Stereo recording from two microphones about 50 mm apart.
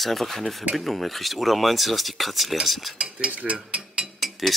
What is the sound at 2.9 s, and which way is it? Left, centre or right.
Speech, centre.